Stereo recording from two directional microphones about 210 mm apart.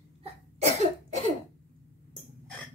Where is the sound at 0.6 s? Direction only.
30° right (ahead or behind).